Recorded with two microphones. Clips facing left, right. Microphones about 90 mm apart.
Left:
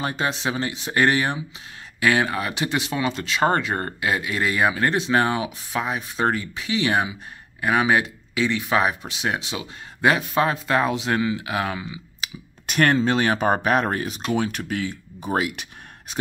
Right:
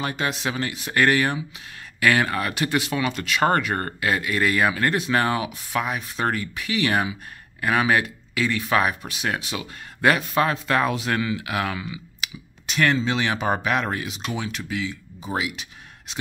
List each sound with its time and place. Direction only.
0.0 s speech: 30° left (ahead or behind)
12.6 s speech: 50° left (ahead or behind)